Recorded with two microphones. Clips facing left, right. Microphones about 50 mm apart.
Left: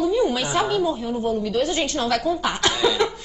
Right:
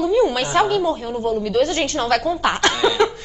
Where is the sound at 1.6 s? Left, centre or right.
Right.